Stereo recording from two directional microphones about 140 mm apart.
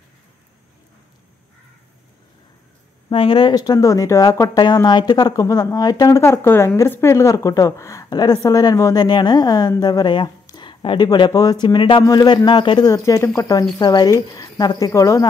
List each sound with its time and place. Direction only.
3.1 s speech: 40° left (ahead or behind); by 15.2 s 25° left (ahead or behind)